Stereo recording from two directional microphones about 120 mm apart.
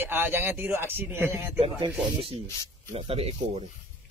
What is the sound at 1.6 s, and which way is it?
Speech, 40° right (ahead or behind).